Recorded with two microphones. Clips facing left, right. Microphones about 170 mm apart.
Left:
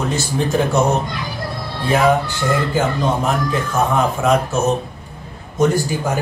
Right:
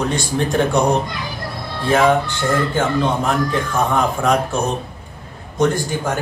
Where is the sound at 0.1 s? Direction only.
5° left (ahead or behind).